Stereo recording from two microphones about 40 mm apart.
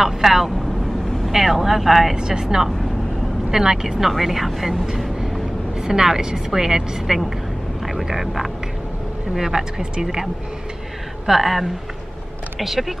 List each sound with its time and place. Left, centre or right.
0.0 s speech: centre
2.1 s a woman's voice: centre
11.2 s speech: centre